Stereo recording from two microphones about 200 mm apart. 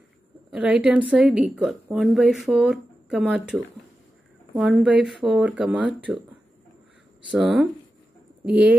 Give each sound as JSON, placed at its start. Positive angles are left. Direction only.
{"t": 0.5, "sound": "a woman's voice", "side_deg": -5}
{"t": 7.2, "sound": "a woman's voice", "side_deg": 0}